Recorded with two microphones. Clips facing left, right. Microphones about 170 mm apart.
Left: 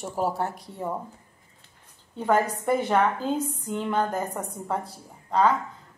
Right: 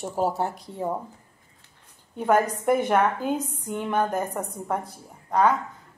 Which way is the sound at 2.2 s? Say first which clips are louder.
Right 2 dB; 15° right (ahead or behind).